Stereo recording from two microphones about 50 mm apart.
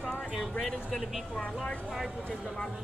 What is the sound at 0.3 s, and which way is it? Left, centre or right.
Speech, centre.